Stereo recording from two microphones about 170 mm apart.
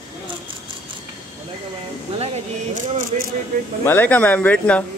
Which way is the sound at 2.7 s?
50° right (ahead or behind).